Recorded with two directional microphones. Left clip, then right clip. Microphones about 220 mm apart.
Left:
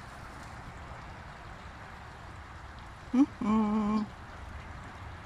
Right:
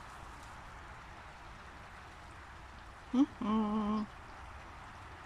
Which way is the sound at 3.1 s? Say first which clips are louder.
Left 5 dB; 5° left (ahead or behind).